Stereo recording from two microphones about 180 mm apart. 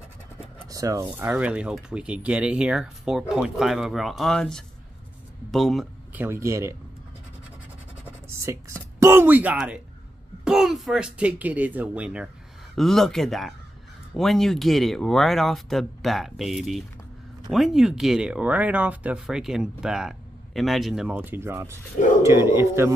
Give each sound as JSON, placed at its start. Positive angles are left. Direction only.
{"t": 0.7, "sound": "speech", "side_deg": -20}
{"t": 1.0, "sound": "speech", "side_deg": -5}
{"t": 6.1, "sound": "speech", "side_deg": -15}
{"t": 8.3, "sound": "speech", "side_deg": -15}